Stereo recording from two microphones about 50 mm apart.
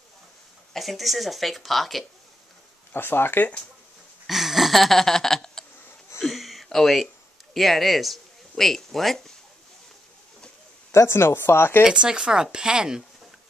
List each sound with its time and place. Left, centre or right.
0.7 s speech: centre
2.9 s speech: left
4.3 s a sound: centre
6.2 s a sound: centre
7.5 s speech: centre
10.9 s speech: left
11.8 s speech: centre